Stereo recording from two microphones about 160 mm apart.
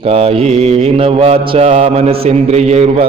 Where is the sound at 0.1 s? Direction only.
40° right (ahead or behind).